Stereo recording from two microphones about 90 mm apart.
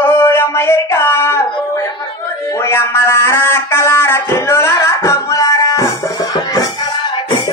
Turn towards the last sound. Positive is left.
turn(degrees=40)  # may be behind; listen again after turning